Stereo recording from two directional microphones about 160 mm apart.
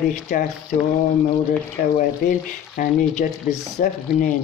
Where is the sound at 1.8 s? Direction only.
65° left (ahead or behind).